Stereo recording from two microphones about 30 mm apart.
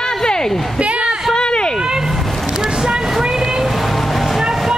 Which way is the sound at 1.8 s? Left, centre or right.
Centre.